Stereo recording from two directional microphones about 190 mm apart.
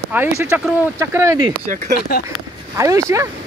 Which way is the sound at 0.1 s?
10° right (ahead or behind).